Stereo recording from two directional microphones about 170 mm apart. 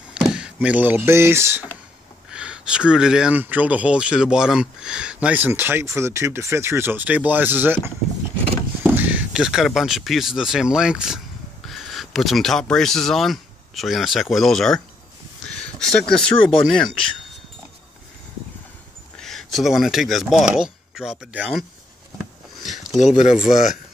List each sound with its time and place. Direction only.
0.1 s speech: 5° right (ahead or behind)
19.1 s speech: centre (ahead or behind)
22.2 s a sound: centre (ahead or behind)
22.9 s speech: 45° left (ahead or behind)